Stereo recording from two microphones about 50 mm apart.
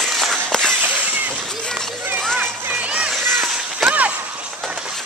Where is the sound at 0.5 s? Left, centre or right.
Centre.